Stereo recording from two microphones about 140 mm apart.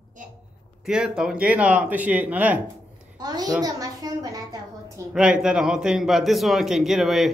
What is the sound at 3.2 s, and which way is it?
A child's voice, 30° right (ahead or behind).